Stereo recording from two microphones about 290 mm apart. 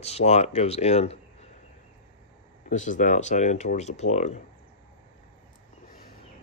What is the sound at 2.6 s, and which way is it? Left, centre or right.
Speech, left.